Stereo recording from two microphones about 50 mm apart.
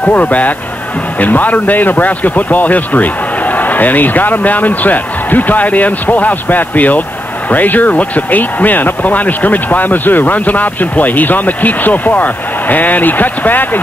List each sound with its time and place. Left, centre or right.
0.0 s speech: left